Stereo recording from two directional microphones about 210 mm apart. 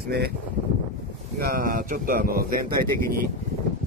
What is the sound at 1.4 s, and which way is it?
Speech, 45° right (ahead or behind).